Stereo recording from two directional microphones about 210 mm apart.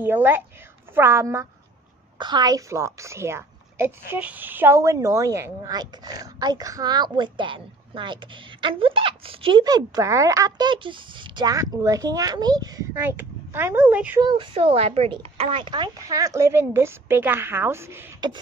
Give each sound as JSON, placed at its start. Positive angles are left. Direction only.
{"t": 0.0, "sound": "a woman's voice", "side_deg": -10}
{"t": 14.2, "sound": "a woman's voice", "side_deg": -20}